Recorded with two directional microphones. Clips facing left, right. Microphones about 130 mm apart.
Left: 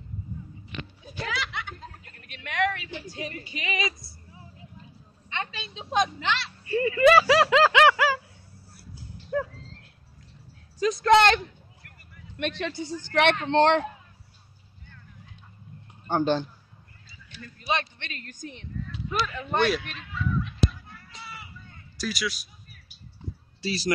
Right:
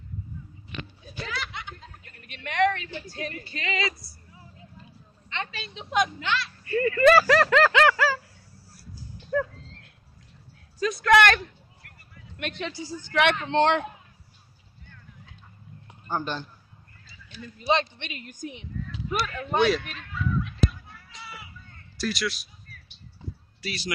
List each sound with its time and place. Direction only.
1.2 s snicker: 90° left
2.1 s a woman's voice: centre (ahead or behind); by 4.5 s 25° left (ahead or behind)
5.9 s speech: 25° left (ahead or behind)
7.2 s snicker: 10° left (ahead or behind)
9.3 s a sound: 25° left (ahead or behind)
10.8 s a sound: 25° left (ahead or behind)
12.7 s speech: 65° left (ahead or behind)
13.1 s speech: 40° left (ahead or behind)
16.1 s a man's voice: 80° left
17.6 s a sound: 20° right (ahead or behind); by 22.5 s centre (ahead or behind)
23.6 s speech: 35° left (ahead or behind)